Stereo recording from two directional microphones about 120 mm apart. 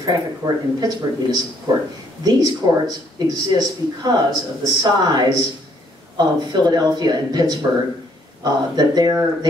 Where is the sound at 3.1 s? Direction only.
35° right (ahead or behind).